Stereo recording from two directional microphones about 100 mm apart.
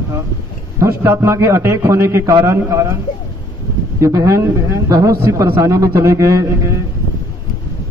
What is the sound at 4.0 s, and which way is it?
A man's voice, 30° right (ahead or behind).